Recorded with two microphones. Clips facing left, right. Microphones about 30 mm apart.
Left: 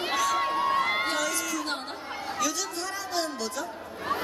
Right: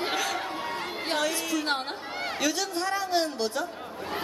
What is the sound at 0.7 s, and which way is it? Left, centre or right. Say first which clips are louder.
Crowd: left 8 dB; left.